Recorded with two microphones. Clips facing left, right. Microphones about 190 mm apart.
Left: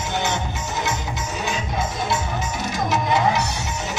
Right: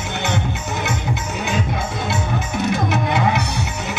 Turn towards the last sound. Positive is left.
turn(degrees=-60)  # may be behind; listen again after turning